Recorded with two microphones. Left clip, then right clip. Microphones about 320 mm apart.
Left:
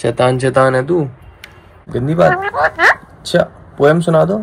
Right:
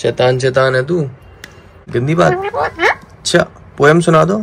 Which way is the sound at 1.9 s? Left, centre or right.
Centre.